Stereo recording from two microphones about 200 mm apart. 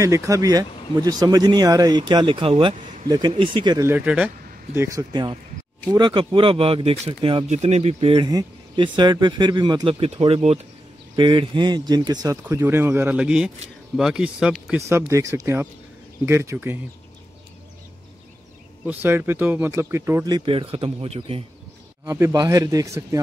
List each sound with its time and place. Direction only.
0.0 s speech: 15° right (ahead or behind)
3.9 s speech: 5° right (ahead or behind)
19.0 s speech: 10° right (ahead or behind); by 21.4 s 30° right (ahead or behind)
22.0 s speech: 15° right (ahead or behind)